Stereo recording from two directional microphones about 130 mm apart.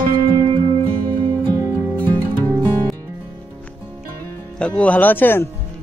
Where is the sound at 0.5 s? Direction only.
45° right (ahead or behind).